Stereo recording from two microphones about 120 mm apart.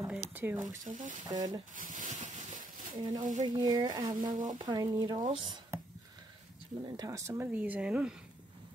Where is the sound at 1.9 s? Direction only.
90° right.